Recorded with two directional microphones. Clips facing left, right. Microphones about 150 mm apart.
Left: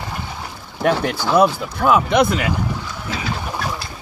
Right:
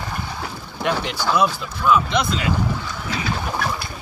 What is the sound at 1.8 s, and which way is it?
Speech, 55° left (ahead or behind).